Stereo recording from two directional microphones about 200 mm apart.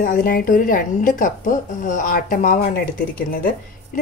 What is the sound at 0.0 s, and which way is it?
A woman's voice, 45° left (ahead or behind).